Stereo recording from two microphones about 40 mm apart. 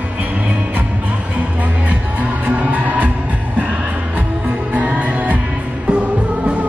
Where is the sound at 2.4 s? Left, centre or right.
Right.